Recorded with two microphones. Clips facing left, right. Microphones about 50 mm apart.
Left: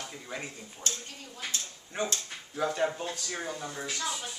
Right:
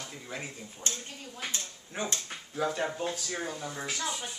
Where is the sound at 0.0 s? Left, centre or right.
Centre.